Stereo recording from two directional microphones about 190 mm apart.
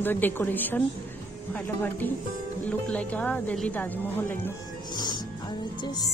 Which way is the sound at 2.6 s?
5° left (ahead or behind).